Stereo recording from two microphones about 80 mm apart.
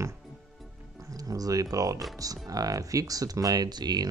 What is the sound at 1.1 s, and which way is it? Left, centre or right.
Speech, right.